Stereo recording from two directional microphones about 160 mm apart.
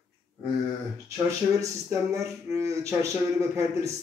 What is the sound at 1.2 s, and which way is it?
Speech, 15° right (ahead or behind).